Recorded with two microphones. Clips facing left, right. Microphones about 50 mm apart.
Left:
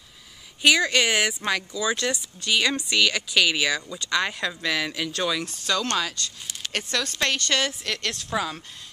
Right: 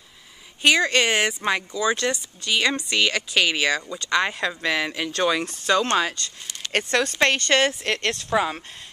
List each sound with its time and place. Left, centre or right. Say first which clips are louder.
0.7 s speech: right 2 dB; right
6.7 s speech: right 6 dB; right